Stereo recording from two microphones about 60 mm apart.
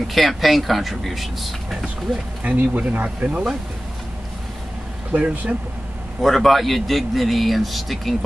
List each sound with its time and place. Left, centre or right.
0.1 s a man's voice: centre
2.4 s speech: right
5.1 s speech: right
6.2 s a man's voice: centre